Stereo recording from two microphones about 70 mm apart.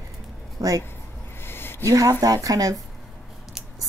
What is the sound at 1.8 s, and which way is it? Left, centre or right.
Speech, right.